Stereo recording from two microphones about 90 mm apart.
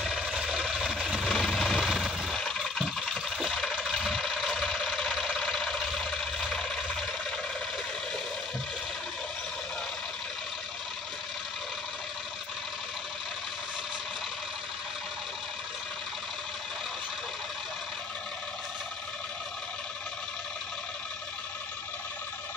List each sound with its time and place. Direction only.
0.0 s engine: centre (ahead or behind)